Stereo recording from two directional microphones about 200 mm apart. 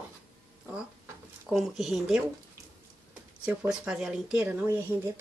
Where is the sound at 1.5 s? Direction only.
Centre (ahead or behind).